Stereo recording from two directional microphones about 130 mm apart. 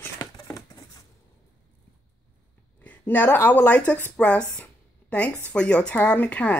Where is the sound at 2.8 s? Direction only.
10° left (ahead or behind).